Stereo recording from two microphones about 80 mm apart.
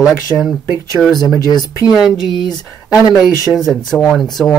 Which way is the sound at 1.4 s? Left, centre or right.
Left.